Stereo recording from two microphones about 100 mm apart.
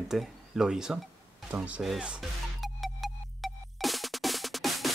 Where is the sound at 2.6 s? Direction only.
Centre (ahead or behind).